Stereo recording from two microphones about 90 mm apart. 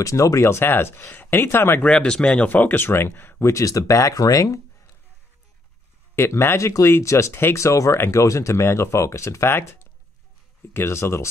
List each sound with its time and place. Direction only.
0.0 s speech: 35° left (ahead or behind)
1.9 s speech: 10° left (ahead or behind); by 4.6 s 40° left (ahead or behind)
6.1 s speech: 25° left (ahead or behind)
10.7 s speech: 30° left (ahead or behind)